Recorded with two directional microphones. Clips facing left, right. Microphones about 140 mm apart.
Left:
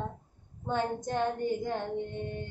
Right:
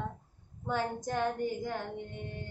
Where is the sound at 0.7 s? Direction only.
25° left (ahead or behind).